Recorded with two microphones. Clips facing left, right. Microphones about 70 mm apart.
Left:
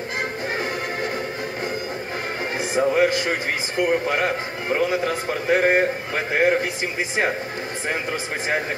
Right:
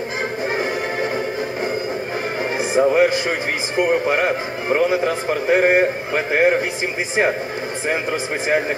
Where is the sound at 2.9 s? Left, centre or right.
Right.